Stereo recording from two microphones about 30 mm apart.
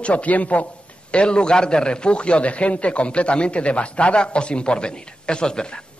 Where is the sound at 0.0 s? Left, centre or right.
Left.